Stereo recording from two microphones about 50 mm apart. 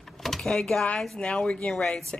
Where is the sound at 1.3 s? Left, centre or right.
Centre.